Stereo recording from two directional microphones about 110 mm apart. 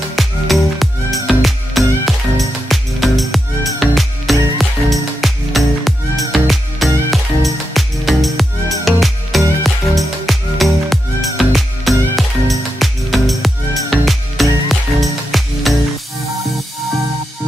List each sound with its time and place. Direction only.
0.1 s music: centre (ahead or behind)